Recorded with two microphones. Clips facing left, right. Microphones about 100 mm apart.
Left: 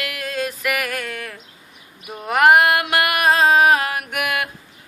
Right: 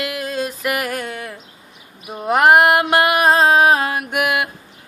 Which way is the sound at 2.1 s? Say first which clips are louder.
Right 1 dB; 25° right (ahead or behind).